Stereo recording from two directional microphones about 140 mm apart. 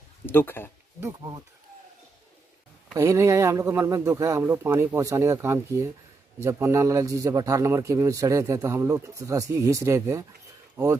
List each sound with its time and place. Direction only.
0.3 s speech: 15° left (ahead or behind)
1.0 s a man's voice: 25° right (ahead or behind)
2.9 s a man's voice: 20° right (ahead or behind)